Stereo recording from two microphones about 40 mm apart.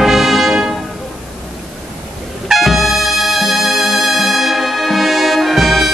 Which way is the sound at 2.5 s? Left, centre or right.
Centre.